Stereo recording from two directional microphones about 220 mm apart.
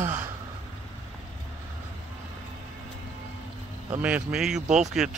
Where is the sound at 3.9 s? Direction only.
5° right (ahead or behind).